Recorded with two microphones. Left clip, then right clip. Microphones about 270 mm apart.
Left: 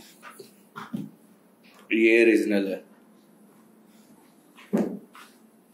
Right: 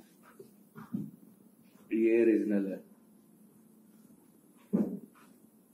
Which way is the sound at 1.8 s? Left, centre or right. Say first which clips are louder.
Left 8 dB; centre.